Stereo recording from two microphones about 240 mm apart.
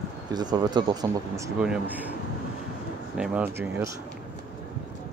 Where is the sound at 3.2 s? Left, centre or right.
Centre.